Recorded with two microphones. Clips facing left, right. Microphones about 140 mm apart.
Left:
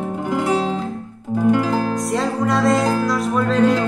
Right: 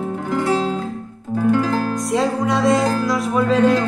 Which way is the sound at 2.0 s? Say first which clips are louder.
Right 1 dB; centre (ahead or behind).